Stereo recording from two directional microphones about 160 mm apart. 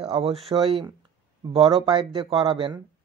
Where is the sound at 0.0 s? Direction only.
35° right (ahead or behind).